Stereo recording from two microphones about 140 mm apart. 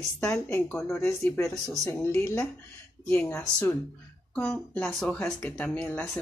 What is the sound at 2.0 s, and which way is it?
Speech, 15° left (ahead or behind).